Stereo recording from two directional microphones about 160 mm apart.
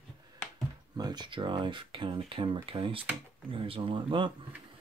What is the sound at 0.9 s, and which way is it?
Speech, 25° right (ahead or behind).